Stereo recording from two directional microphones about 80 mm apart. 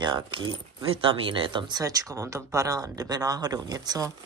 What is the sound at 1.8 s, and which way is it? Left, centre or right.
Speech, right.